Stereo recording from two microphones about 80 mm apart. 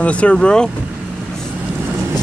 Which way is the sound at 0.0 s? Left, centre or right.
Centre.